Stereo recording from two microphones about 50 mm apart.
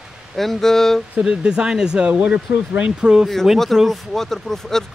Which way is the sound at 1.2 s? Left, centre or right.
Centre.